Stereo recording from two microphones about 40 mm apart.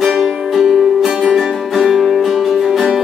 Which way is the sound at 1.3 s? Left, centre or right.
Centre.